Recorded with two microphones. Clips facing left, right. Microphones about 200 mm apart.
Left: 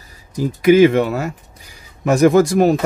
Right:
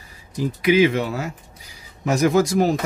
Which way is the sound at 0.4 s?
45° left (ahead or behind).